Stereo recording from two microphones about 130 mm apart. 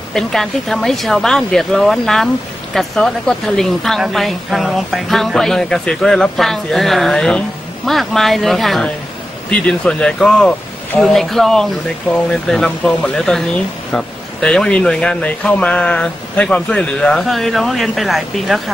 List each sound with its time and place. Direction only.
0.1 s speech: 5° left (ahead or behind)